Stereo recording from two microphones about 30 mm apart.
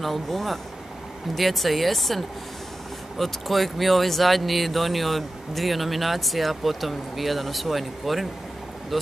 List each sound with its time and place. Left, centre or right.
0.0 s speech: centre